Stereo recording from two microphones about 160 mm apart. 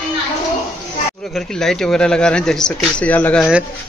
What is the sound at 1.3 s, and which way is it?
Speech, 5° left (ahead or behind).